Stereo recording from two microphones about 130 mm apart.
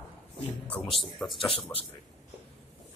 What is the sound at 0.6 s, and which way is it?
Speech, 10° left (ahead or behind).